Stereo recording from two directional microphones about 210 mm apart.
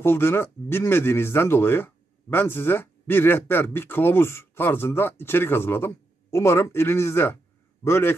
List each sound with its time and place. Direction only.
0.0 s a man's voice: 10° left (ahead or behind)